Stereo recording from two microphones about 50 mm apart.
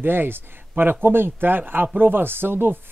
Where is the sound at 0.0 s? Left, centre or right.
Right.